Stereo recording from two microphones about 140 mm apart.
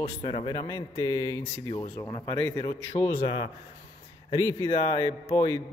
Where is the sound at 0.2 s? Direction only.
35° left (ahead or behind).